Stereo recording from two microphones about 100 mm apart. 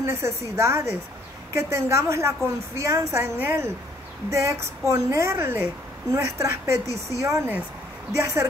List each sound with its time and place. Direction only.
0.0 s a woman's voice: 30° right (ahead or behind)
3.2 s a woman's voice: 15° right (ahead or behind)
4.3 s a woman's voice: 30° right (ahead or behind)